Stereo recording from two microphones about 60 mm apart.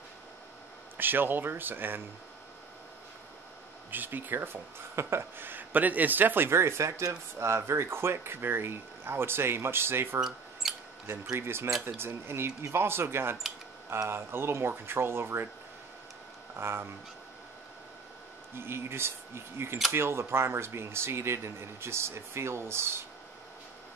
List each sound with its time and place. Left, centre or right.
0.9 s speech: right
3.9 s speech: right
10.6 s mouse: centre
11.3 s speech: right
16.5 s speech: right
18.5 s speech: right